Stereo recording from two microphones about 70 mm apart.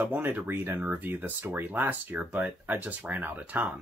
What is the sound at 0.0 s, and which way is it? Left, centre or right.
Speech, right.